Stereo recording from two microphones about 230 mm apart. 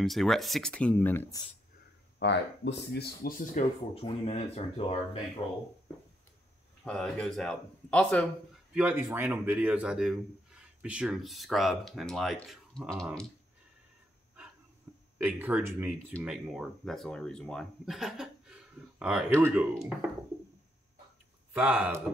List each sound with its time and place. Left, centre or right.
0.0 s a man's voice: centre
2.1 s speech: left
3.9 s speech: left
6.8 s a man's voice: centre
8.7 s a man's voice: centre
15.1 s a man's voice: centre
21.5 s a man's voice: centre